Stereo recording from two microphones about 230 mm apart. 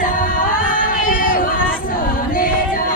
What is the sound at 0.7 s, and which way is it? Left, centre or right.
Crowd, left.